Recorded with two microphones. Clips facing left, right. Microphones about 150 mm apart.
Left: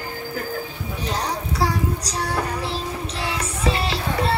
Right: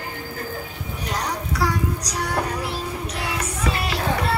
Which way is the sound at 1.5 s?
30° left (ahead or behind).